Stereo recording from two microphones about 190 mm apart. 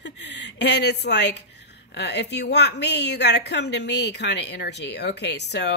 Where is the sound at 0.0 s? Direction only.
65° left (ahead or behind).